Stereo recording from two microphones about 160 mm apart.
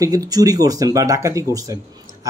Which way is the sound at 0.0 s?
20° right (ahead or behind).